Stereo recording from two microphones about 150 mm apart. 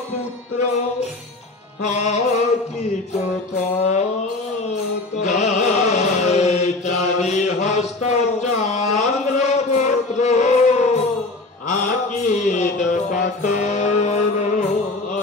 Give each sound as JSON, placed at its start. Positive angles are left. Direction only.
{"t": 1.9, "sound": "mantra", "side_deg": 50}
{"t": 3.5, "sound": "mantra", "side_deg": 50}
{"t": 5.1, "sound": "music", "side_deg": 50}
{"t": 8.1, "sound": "a sound", "side_deg": 50}